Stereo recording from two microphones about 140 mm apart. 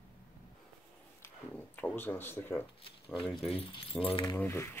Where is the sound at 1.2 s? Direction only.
15° left (ahead or behind).